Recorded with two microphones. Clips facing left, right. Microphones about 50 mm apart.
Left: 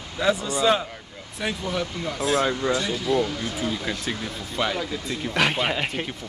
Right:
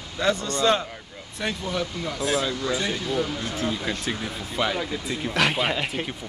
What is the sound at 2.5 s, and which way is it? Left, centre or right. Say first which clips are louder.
Speech: left 3 dB; left.